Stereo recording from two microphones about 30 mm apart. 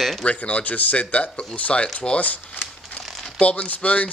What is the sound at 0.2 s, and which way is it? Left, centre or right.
Speech, left.